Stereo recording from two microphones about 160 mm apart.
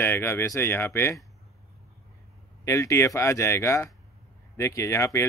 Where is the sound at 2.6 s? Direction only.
20° left (ahead or behind).